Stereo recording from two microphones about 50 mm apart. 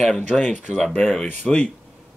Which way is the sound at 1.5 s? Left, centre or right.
Centre.